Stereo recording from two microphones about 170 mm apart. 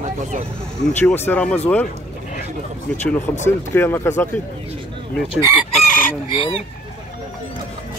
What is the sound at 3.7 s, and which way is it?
Speech, 10° left (ahead or behind).